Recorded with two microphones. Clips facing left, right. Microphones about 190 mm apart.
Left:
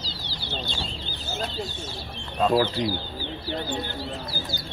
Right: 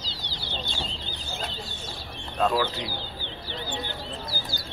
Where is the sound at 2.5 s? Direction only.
35° left (ahead or behind).